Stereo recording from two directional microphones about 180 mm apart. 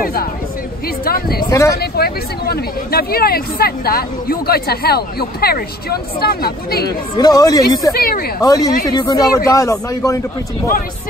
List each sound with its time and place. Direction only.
0.0 s a sound: 55° left (ahead or behind)
0.8 s speech: 55° left (ahead or behind)
1.4 s speech: 15° left (ahead or behind)
1.8 s speech: 60° left (ahead or behind)
7.2 s speech: 20° left (ahead or behind)
7.9 s speech: 55° left (ahead or behind)
8.4 s speech: 20° left (ahead or behind)